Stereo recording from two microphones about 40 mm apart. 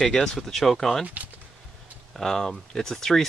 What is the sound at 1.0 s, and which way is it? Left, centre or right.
Speech, right.